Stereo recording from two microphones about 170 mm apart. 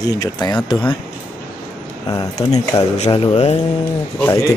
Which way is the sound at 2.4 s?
40° left (ahead or behind).